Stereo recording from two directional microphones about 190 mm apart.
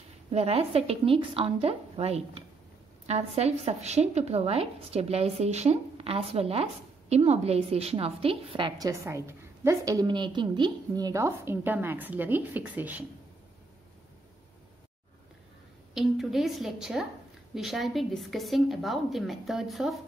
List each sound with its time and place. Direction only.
0.3 s a woman's voice: 30° right (ahead or behind); by 13.0 s 10° right (ahead or behind)
15.9 s a woman's voice: centre (ahead or behind)